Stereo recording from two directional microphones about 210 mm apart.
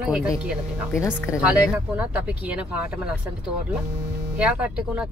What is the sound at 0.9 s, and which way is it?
Speech, 15° left (ahead or behind).